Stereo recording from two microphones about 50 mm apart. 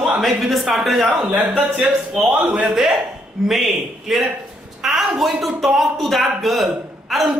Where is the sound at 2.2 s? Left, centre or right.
Centre.